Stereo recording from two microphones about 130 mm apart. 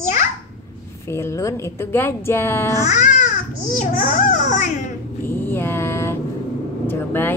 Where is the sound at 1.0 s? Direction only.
20° left (ahead or behind).